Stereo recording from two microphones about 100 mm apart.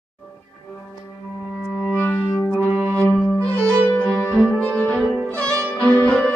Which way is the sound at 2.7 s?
15° right (ahead or behind).